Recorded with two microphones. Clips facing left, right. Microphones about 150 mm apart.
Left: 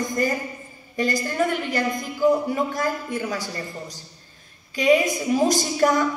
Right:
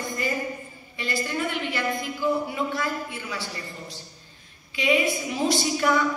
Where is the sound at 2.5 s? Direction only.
45° left (ahead or behind).